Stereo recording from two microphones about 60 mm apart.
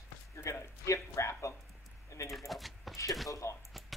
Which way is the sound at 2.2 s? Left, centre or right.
Left.